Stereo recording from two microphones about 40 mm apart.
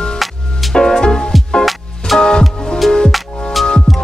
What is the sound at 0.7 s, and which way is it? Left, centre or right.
Music, centre.